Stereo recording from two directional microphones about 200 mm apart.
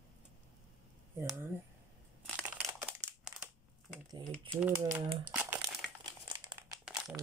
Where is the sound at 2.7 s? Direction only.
10° right (ahead or behind).